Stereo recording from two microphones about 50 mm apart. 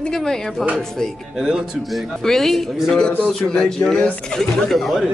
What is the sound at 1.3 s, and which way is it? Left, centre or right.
Speech, centre.